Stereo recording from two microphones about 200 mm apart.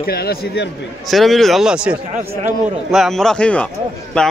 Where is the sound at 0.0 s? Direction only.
50° left (ahead or behind).